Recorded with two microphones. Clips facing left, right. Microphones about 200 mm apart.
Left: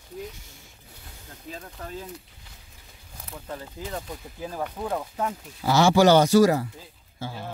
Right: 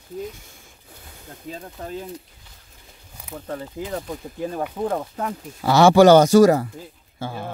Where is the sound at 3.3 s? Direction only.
60° right (ahead or behind).